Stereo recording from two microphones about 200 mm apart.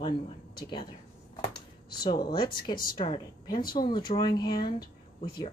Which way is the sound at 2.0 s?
20° left (ahead or behind).